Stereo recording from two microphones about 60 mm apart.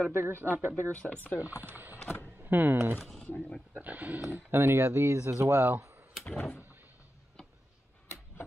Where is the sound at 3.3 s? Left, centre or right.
Centre.